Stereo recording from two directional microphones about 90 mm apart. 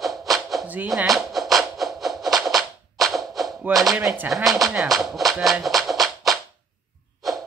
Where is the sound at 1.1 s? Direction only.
Centre (ahead or behind).